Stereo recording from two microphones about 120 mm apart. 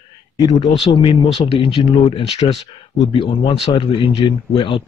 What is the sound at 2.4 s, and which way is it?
Speech, 65° left (ahead or behind).